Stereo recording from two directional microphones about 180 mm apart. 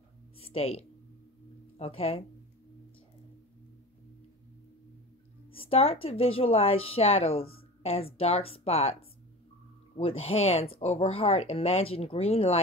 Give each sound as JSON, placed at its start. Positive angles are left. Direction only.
{"t": 0.4, "sound": "a woman's voice", "side_deg": 35}
{"t": 5.5, "sound": "a woman's voice", "side_deg": 30}
{"t": 9.9, "sound": "a woman's voice", "side_deg": 35}